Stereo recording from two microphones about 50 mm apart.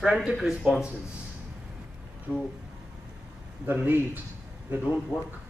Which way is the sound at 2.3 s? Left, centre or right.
Right.